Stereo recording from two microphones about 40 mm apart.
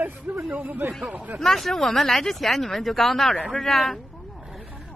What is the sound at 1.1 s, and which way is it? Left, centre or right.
Speech, right.